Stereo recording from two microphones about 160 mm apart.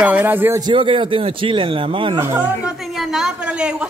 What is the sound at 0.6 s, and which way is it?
A man's voice, 35° right (ahead or behind).